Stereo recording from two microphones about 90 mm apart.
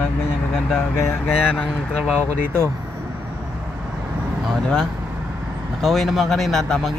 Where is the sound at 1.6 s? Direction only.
10° left (ahead or behind).